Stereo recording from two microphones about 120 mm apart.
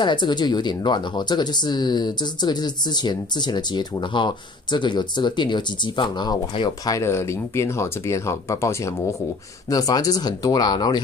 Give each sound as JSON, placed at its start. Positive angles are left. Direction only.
{"t": 0.0, "sound": "speech", "side_deg": 40}
{"t": 7.0, "sound": "speech", "side_deg": 20}